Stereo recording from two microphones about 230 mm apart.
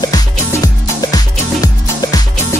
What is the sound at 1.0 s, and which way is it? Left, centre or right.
Music, centre.